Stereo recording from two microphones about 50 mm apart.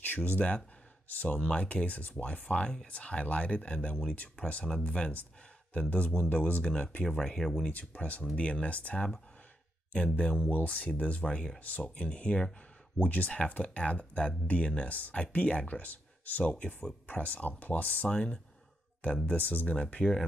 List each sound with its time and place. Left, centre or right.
0.0 s speech: left; by 7.5 s centre
7.9 s speech: left
10.1 s speech: left
19.7 s speech: left